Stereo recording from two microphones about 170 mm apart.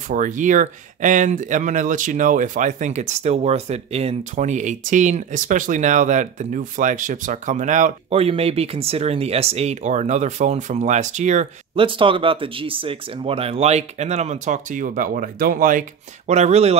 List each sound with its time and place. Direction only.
0.1 s speech: 50° right (ahead or behind)
11.8 s speech: 30° right (ahead or behind); by 15.8 s 55° right (ahead or behind)
16.3 s speech: 40° right (ahead or behind)